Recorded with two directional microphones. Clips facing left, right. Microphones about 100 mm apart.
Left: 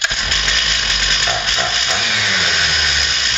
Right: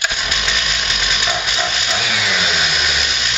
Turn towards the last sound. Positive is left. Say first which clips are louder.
# even
turn(degrees=-5)  # may be behind; listen again after turning